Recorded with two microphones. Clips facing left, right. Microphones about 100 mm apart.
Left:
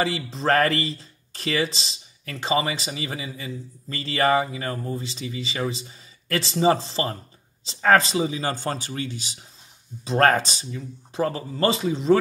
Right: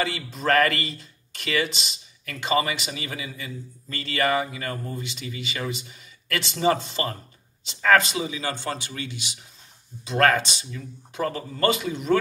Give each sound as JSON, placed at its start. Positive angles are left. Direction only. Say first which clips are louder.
{"t": 0.0, "sound": "speech", "louder": "left 2 dB", "side_deg": 30}